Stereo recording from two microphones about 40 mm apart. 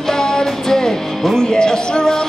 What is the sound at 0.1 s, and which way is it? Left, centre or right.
Music, centre.